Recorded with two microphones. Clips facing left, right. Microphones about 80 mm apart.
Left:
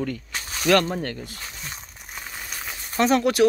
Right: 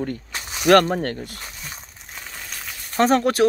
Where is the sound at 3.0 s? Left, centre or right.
Right.